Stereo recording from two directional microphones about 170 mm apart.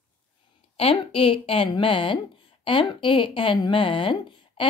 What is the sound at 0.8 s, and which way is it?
A woman's voice, 35° left (ahead or behind).